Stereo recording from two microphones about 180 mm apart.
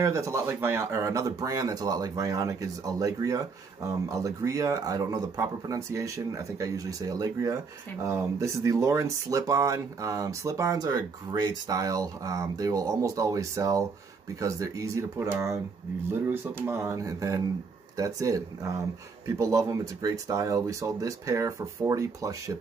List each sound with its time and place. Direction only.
0.0 s speech: 15° right (ahead or behind)